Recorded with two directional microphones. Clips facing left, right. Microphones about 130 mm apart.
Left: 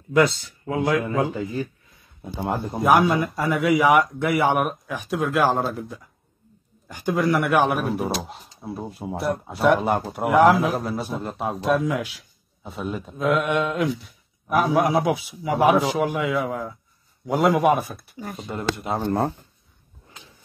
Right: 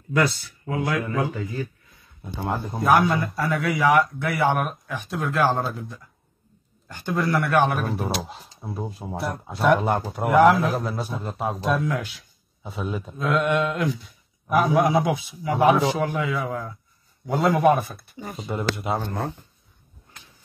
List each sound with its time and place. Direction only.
0.1 s speech: 20° left (ahead or behind)
2.2 s speech: 10° left (ahead or behind)